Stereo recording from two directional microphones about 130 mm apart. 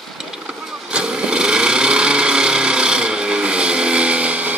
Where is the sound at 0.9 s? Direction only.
5° right (ahead or behind).